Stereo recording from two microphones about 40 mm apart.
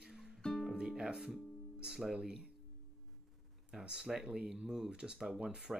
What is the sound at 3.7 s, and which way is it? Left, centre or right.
Speech, centre.